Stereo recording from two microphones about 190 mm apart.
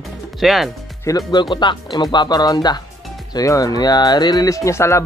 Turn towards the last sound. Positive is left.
turn(degrees=15)  # may be behind; listen again after turning